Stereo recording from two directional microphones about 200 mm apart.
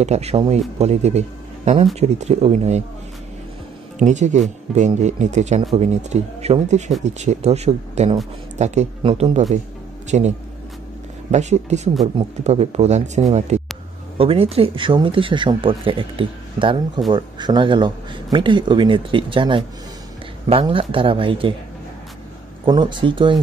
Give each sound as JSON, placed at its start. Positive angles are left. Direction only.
{"t": 0.0, "sound": "speech", "side_deg": -35}
{"t": 4.0, "sound": "a man's voice", "side_deg": -35}
{"t": 11.3, "sound": "speech", "side_deg": -35}
{"t": 22.7, "sound": "speech", "side_deg": -20}